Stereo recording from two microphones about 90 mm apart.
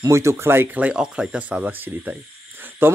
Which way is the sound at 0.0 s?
30° right (ahead or behind).